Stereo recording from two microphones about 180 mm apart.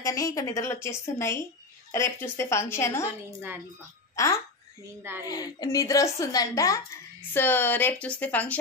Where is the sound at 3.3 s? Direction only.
10° right (ahead or behind).